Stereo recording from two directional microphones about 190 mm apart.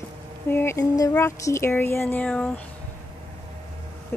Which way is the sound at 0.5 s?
10° left (ahead or behind).